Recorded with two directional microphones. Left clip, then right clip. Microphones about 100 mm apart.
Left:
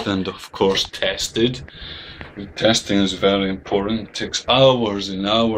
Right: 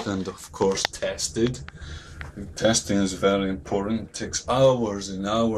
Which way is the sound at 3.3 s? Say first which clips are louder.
Left 5 dB; 10° left (ahead or behind).